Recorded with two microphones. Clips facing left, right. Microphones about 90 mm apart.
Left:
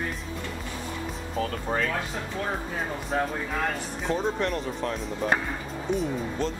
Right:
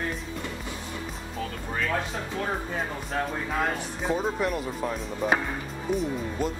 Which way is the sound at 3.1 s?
15° left (ahead or behind).